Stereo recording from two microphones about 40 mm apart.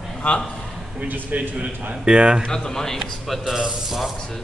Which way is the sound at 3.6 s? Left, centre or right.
Centre.